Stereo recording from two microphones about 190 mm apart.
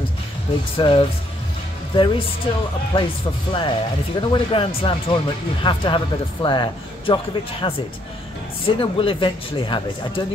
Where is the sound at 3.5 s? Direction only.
25° left (ahead or behind).